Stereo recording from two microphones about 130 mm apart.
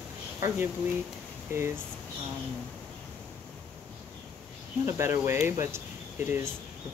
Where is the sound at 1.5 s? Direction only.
20° right (ahead or behind).